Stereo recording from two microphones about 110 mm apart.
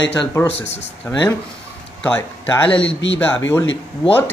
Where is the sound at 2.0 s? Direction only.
15° left (ahead or behind).